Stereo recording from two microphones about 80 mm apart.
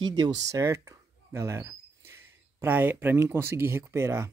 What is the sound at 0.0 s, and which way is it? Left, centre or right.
Speech, right.